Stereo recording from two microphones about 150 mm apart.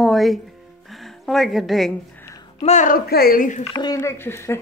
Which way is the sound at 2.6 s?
50° left (ahead or behind).